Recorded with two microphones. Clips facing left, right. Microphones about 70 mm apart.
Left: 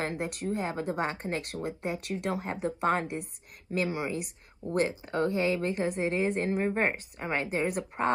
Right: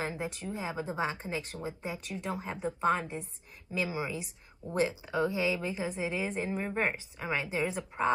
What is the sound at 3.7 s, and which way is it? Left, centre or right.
Speech, left.